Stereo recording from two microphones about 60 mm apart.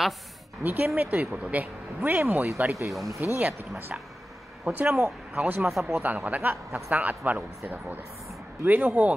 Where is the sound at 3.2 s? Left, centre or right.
Right.